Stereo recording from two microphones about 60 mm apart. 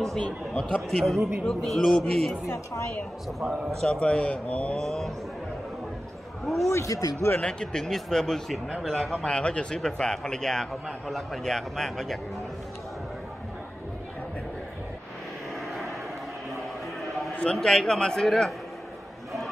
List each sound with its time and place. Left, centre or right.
0.5 s a man's voice: centre
2.4 s a woman's voice: left
3.3 s speech: centre
3.8 s a man's voice: centre
4.7 s speech: centre
6.4 s a man's voice: centre
6.7 s a man's voice: left
7.3 s a man's voice: centre
17.0 s a sound: centre
17.4 s a man's voice: centre